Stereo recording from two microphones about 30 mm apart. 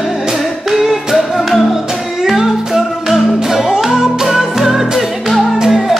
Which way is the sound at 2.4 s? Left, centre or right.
Centre.